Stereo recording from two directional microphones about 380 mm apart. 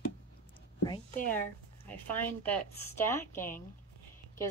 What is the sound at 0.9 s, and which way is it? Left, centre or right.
Speech, left.